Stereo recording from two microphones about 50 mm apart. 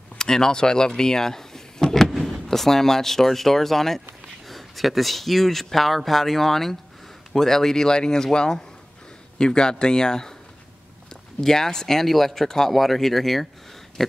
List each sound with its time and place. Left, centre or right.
0.2 s speech: centre